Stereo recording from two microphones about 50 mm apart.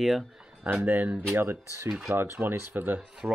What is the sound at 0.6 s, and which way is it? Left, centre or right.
Speech, right.